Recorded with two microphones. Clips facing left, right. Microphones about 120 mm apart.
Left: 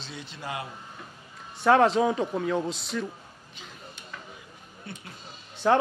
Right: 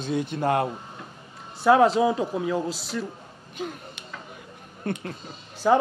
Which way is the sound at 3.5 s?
55° right (ahead or behind).